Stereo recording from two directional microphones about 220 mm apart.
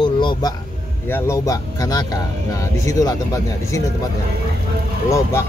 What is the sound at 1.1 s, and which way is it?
Speech, 10° left (ahead or behind).